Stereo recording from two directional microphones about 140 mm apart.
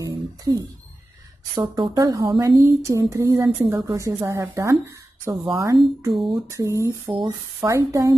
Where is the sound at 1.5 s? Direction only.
25° right (ahead or behind).